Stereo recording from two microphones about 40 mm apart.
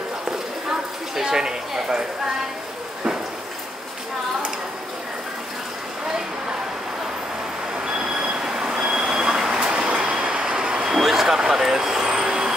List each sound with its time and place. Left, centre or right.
0.7 s a sound: centre
7.7 s vehicle: centre
8.5 s train: centre
9.8 s vehicle: right
10.9 s vehicle: centre